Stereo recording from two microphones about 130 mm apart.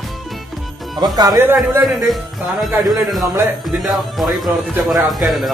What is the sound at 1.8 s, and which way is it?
Speech, centre (ahead or behind).